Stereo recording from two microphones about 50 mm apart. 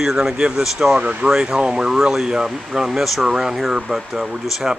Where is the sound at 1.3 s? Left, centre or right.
Centre.